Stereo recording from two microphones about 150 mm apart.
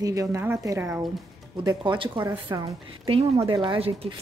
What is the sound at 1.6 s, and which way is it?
A woman's voice, 25° right (ahead or behind).